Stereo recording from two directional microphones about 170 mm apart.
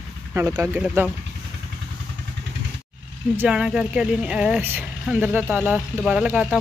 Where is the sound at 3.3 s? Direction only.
5° right (ahead or behind).